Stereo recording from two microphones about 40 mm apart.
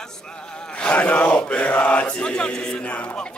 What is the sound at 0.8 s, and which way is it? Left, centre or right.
Mantra, left.